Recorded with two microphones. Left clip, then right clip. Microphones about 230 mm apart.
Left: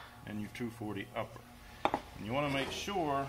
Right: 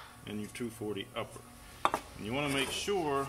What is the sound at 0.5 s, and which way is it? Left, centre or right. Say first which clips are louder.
Speech: right 3 dB; centre.